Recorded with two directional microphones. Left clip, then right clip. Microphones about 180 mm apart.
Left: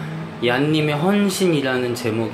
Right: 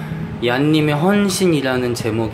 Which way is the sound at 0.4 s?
10° right (ahead or behind).